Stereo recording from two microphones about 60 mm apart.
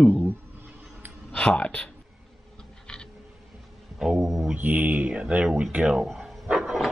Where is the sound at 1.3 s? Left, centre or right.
Left.